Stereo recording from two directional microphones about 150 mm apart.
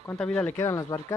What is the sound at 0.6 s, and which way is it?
Speech, 20° left (ahead or behind).